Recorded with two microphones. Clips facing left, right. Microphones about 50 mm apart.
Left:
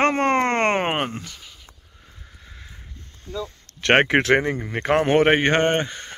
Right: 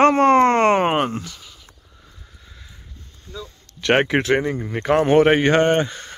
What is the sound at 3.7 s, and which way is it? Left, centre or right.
Speech, left.